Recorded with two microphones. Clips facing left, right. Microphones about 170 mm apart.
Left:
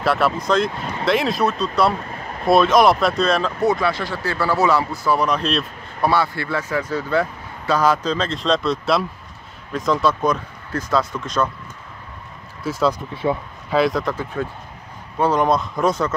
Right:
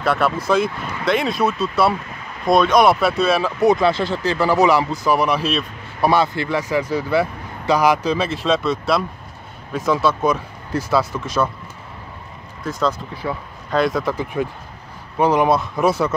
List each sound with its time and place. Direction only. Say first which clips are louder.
0.0 s speech: even; centre (ahead or behind)
3.7 s speech: right 4 dB; 25° right (ahead or behind); by 6.0 s 5° right (ahead or behind)
6.0 s speech: right 2 dB; 20° right (ahead or behind)
12.6 s speech: left 1 dB; 5° left (ahead or behind)
13.1 s speech: left 4 dB; 25° left (ahead or behind)
13.7 s speech: even; centre (ahead or behind)
14.1 s speech: right 3 dB; 15° right (ahead or behind)